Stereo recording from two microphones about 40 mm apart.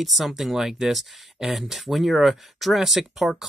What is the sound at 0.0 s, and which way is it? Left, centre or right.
Speech, centre.